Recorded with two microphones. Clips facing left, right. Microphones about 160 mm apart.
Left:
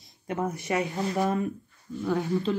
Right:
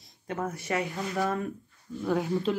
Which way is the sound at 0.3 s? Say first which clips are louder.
Left 2 dB; 15° left (ahead or behind).